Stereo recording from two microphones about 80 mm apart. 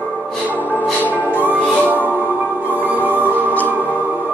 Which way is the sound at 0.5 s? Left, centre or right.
Left.